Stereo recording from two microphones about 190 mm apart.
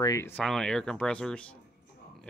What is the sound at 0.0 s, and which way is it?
Speech, 15° left (ahead or behind).